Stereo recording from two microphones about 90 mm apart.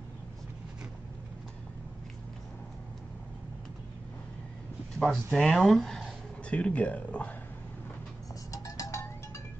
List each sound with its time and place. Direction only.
4.9 s speech: 5° left (ahead or behind)
8.5 s music: 40° left (ahead or behind)